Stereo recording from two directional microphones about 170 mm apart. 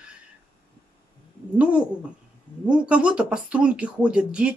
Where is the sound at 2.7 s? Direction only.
5° right (ahead or behind).